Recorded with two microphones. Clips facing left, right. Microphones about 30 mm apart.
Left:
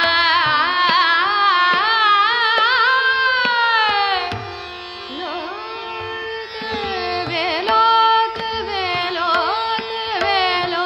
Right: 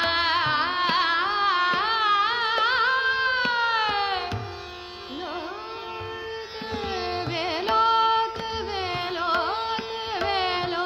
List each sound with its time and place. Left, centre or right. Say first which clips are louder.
0.0 s carnatic music: left 8 dB; left
6.9 s carnatic music: left 6 dB; left